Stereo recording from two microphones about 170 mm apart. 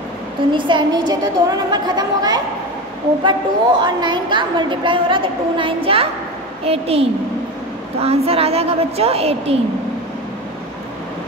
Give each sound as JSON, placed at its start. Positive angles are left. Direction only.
{"t": 0.5, "sound": "a woman's voice", "side_deg": -30}